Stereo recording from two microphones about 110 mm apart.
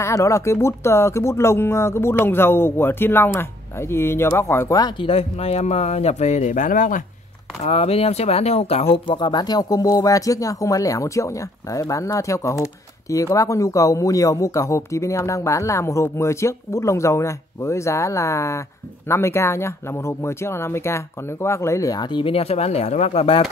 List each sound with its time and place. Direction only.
0.0 s speech: 25° left (ahead or behind)
5.0 s speech: 65° left (ahead or behind); by 6.4 s 90° left
7.6 s speech: 70° left (ahead or behind)
8.9 s speech: 50° left (ahead or behind); by 22.0 s 30° left (ahead or behind)
22.1 s speech: 55° left (ahead or behind)